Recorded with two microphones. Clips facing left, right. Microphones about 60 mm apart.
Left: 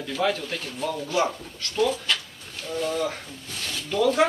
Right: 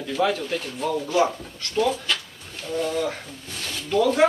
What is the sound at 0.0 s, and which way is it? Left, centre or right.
Speech, centre.